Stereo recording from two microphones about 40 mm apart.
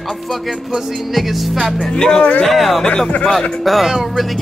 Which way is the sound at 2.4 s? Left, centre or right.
Centre.